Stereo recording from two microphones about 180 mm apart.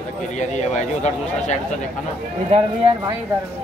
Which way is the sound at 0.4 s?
40° left (ahead or behind).